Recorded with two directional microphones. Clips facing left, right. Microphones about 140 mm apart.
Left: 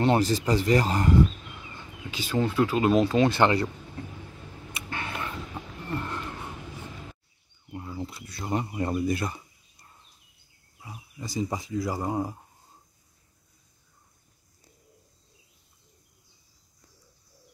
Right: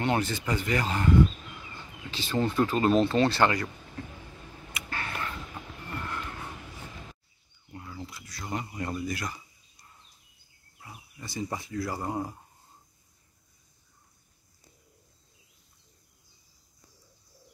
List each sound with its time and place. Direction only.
0.0 s speech: 35° left (ahead or behind)
2.0 s speech: 10° left (ahead or behind)
4.7 s a sound: 20° left (ahead or behind)
7.7 s a sound: 25° left (ahead or behind)
9.0 s speech: 25° left (ahead or behind)
10.8 s wild animals: 20° left (ahead or behind)
11.7 s speech: 15° left (ahead or behind)